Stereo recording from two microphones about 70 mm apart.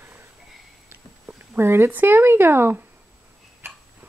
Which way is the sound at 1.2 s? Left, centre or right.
Right.